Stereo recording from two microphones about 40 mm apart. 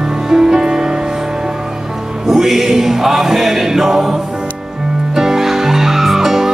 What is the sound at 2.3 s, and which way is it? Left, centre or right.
Music, centre.